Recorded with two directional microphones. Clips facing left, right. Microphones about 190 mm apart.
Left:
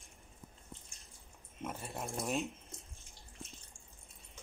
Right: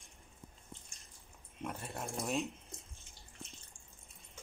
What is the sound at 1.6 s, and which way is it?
Speech, centre (ahead or behind).